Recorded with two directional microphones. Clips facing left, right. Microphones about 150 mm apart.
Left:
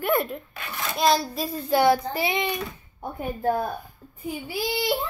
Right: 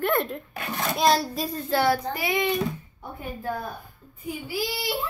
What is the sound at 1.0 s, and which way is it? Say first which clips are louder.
A child's voice: left 1 dB; centre (ahead or behind).